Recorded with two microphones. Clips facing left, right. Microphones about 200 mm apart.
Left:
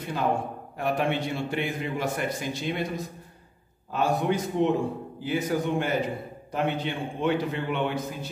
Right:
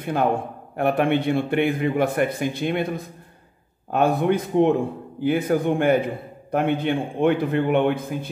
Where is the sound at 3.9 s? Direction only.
55° right (ahead or behind).